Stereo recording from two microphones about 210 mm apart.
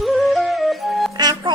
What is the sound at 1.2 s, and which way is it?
Music, 20° right (ahead or behind).